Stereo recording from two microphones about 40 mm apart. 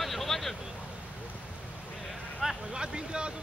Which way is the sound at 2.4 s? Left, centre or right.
Centre.